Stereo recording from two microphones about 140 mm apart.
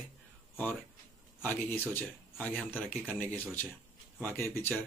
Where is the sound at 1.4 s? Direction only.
15° left (ahead or behind).